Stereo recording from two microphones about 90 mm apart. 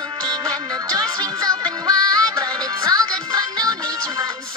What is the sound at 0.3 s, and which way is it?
Music, 45° right (ahead or behind).